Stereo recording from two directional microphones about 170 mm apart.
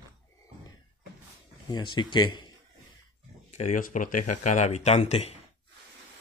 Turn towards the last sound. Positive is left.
turn(degrees=40)  # may be behind; listen again after turning